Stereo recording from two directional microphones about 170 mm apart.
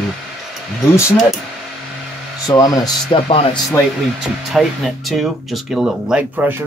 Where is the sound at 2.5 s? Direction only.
20° left (ahead or behind).